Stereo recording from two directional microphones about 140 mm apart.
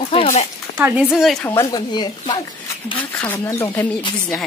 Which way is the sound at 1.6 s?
30° left (ahead or behind).